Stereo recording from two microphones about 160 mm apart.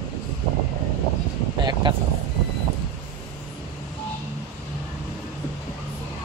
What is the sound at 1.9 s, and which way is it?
Speech, 30° right (ahead or behind).